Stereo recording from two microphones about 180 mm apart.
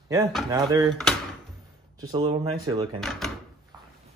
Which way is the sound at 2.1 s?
25° right (ahead or behind).